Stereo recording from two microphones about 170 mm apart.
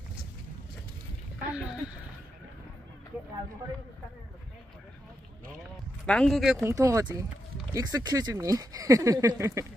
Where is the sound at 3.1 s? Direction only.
10° right (ahead or behind).